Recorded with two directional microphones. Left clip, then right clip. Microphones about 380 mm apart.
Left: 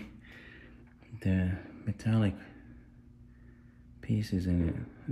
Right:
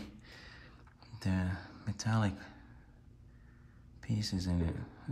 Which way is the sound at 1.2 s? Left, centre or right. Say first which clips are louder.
Left 4 dB; right.